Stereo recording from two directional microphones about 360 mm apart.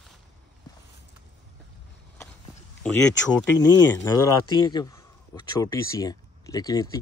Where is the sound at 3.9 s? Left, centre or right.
Centre.